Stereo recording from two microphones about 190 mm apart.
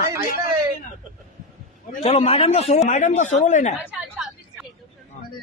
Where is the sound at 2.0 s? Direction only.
30° left (ahead or behind).